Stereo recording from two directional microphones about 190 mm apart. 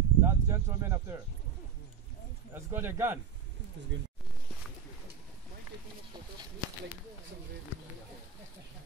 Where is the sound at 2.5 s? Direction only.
10° right (ahead or behind).